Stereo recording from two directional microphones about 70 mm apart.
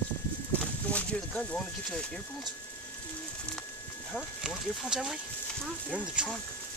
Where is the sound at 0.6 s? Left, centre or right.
Centre.